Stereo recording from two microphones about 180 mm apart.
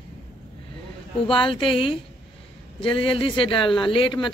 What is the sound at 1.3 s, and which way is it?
Speech, 30° left (ahead or behind).